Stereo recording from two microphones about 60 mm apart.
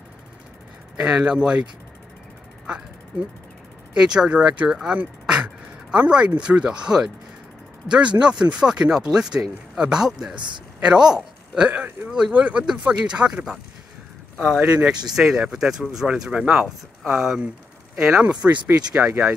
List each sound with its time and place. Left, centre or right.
0.9 s speech: centre
3.9 s speech: centre
17.1 s speech: centre
18.2 s speech: right